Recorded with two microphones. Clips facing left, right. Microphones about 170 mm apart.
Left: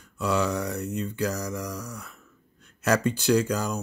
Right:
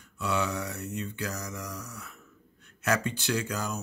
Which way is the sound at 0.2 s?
40° left (ahead or behind).